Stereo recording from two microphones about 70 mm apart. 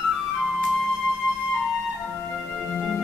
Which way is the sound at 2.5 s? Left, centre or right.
Centre.